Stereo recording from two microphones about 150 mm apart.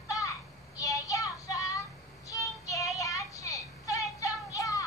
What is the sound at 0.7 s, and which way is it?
Child singing, 20° left (ahead or behind).